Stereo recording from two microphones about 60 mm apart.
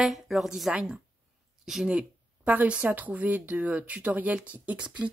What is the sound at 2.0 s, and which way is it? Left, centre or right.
Speech, right.